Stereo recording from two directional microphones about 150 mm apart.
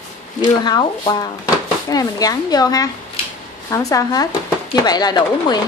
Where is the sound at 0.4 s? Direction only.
25° left (ahead or behind).